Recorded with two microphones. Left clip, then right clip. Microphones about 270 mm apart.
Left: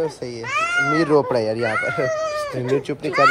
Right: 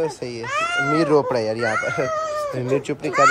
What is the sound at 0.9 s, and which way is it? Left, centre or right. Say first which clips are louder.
Speech: right 2 dB; centre.